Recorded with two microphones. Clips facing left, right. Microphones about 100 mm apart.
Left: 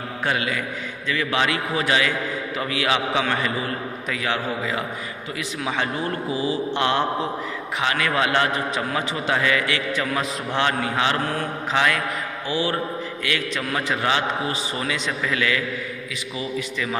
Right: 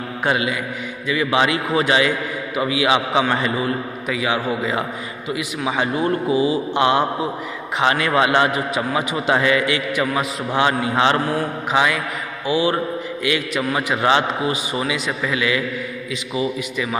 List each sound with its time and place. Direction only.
0.2 s a man's voice: 20° right (ahead or behind)
2.5 s a man's voice: 10° right (ahead or behind)
4.1 s a man's voice: 10° right (ahead or behind)
14.0 s a man's voice: 25° right (ahead or behind)
14.7 s a man's voice: 10° right (ahead or behind)